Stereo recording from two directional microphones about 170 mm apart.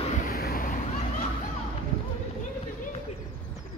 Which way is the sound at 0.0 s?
45° left (ahead or behind).